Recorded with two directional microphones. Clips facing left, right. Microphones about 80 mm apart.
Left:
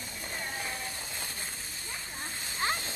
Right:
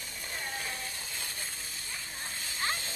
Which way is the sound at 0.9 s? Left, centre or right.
Left.